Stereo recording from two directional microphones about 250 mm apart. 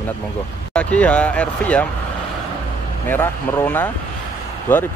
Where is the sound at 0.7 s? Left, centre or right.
Centre.